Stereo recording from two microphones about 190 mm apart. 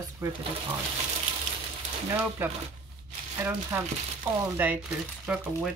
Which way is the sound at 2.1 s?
10° right (ahead or behind).